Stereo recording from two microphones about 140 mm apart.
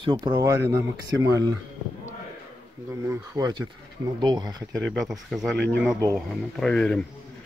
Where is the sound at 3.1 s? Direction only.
25° right (ahead or behind).